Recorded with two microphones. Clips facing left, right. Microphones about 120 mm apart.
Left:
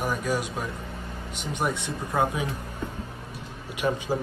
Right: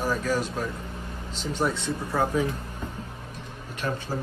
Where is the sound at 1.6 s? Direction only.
20° left (ahead or behind).